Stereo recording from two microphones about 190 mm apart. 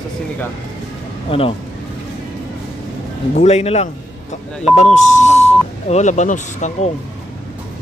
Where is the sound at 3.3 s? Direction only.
35° left (ahead or behind).